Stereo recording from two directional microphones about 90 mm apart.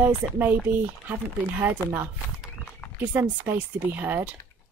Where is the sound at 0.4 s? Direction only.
20° right (ahead or behind).